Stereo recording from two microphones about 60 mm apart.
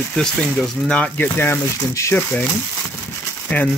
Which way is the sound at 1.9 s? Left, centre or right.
Left.